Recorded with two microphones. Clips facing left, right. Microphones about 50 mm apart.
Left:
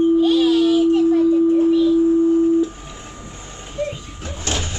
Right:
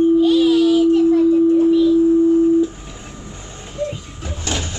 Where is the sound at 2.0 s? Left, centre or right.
Centre.